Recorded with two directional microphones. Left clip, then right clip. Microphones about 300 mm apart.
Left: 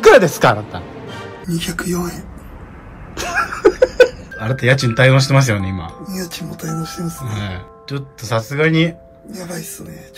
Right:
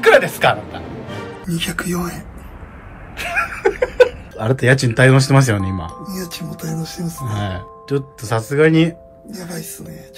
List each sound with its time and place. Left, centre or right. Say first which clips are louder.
0.2 s a man's voice: left 2 dB; centre
1.5 s speech: even; centre
3.2 s a sound: left 1 dB; centre
4.4 s speech: right 1 dB; centre